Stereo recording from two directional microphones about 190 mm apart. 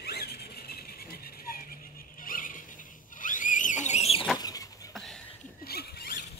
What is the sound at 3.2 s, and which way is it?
Vehicle, 45° left (ahead or behind).